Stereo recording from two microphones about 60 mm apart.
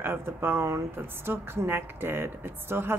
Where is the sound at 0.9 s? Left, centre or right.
Right.